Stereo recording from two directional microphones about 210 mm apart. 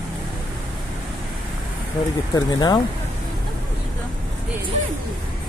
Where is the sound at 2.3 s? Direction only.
20° left (ahead or behind).